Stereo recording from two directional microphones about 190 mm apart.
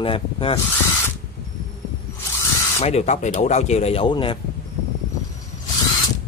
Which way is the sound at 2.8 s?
35° left (ahead or behind).